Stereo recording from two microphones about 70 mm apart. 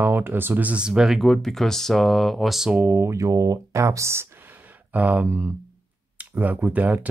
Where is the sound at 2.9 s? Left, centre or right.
Right.